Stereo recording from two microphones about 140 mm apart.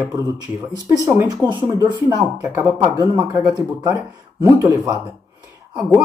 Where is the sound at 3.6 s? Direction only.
20° right (ahead or behind).